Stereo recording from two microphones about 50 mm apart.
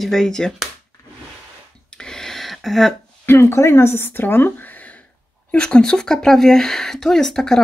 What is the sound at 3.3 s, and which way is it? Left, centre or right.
Speech, left.